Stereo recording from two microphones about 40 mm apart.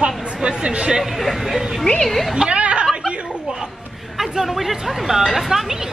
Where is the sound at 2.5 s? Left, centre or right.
Right.